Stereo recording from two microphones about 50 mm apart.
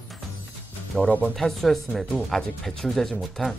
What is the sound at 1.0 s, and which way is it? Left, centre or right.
Speech, left.